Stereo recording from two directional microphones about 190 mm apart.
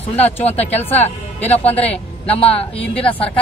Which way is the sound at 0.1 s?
35° left (ahead or behind).